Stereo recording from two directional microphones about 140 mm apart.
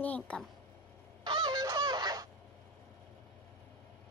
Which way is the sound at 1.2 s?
30° right (ahead or behind).